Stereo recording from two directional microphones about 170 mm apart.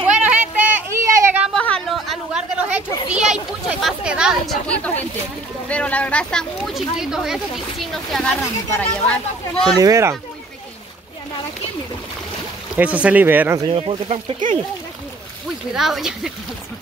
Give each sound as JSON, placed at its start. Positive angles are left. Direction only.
{"t": 0.0, "sound": "a sound", "side_deg": -5}
{"t": 1.5, "sound": "a sound", "side_deg": 5}
{"t": 3.2, "sound": "chatter", "side_deg": -5}
{"t": 5.7, "sound": "speech", "side_deg": 10}
{"t": 9.8, "sound": "speech", "side_deg": -20}
{"t": 12.7, "sound": "speech", "side_deg": -10}
{"t": 13.7, "sound": "speech", "side_deg": -35}
{"t": 15.7, "sound": "speech", "side_deg": 0}